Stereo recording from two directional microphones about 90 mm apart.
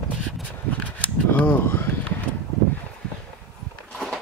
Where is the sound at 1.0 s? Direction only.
20° left (ahead or behind).